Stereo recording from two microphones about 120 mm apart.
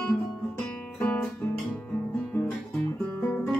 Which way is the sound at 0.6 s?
5° left (ahead or behind).